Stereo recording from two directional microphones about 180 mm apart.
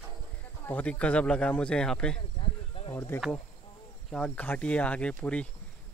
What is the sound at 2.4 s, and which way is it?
Snake, 30° left (ahead or behind).